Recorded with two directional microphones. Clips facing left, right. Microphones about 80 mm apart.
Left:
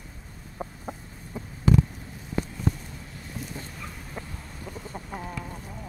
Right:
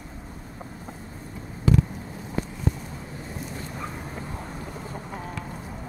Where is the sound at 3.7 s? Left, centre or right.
Right.